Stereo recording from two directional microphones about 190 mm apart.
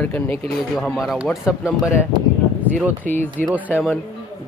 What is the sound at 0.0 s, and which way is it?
Speech, 10° left (ahead or behind).